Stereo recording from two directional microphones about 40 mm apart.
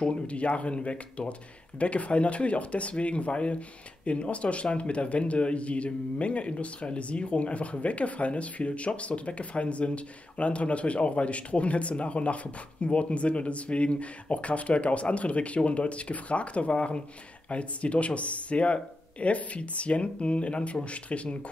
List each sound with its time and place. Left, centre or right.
0.0 s speech: left